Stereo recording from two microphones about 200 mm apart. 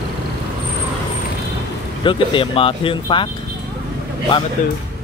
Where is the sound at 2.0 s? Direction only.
25° left (ahead or behind).